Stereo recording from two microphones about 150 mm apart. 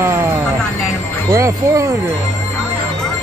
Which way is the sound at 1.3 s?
20° right (ahead or behind).